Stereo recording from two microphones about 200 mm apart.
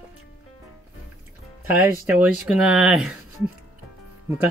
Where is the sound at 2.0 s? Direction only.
5° right (ahead or behind).